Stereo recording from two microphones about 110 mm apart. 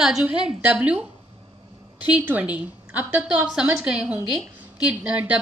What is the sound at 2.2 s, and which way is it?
A woman's voice, 15° right (ahead or behind).